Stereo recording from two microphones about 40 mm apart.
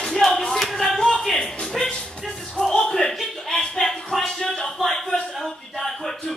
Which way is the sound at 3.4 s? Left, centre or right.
Centre.